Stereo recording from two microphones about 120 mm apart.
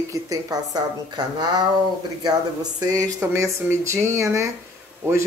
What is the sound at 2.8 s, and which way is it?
Speech, 30° right (ahead or behind).